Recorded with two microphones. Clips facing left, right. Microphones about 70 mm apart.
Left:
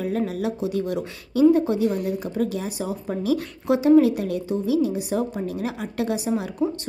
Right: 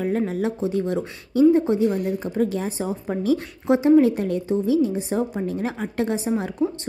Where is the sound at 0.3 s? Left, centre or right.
Right.